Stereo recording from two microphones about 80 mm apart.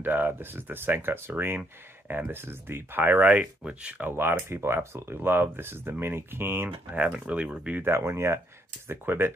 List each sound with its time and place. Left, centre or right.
0.0 s speech: right
4.2 s speech: right
7.8 s speech: right